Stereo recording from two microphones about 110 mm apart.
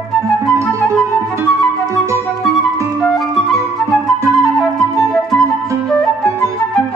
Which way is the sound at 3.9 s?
Centre (ahead or behind).